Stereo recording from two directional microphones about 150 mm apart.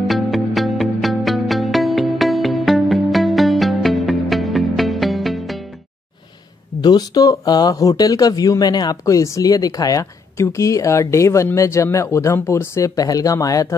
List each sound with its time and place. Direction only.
0.0 s music: centre (ahead or behind)
6.8 s speech: 30° left (ahead or behind)